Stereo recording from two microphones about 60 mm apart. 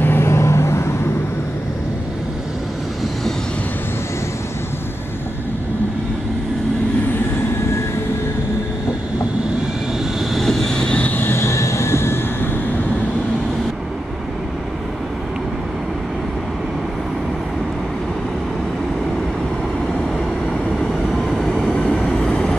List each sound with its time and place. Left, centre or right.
0.0 s vehicle: left
10.3 s vehicle: centre; by 11.3 s left
11.3 s vehicle: left
21.1 s vehicle: centre
21.7 s train: centre